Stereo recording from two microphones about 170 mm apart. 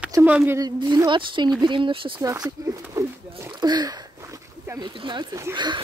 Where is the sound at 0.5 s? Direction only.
25° right (ahead or behind).